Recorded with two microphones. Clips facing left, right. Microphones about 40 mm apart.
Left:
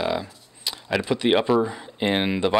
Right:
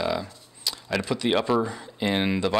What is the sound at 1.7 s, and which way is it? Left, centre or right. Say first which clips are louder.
Speech: left 3 dB; left.